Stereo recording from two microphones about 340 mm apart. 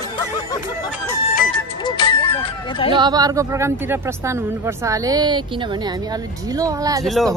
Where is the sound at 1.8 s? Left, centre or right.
Centre.